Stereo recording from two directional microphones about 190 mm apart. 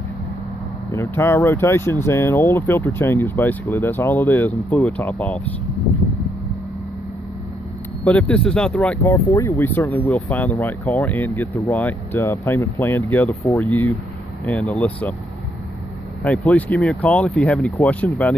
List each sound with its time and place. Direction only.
0.9 s speech: 15° left (ahead or behind)
8.0 s speech: 5° left (ahead or behind)
16.3 s speech: 5° left (ahead or behind)